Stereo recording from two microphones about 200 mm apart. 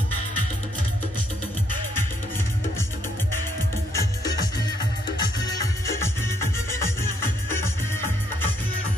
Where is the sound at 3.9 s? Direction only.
20° left (ahead or behind).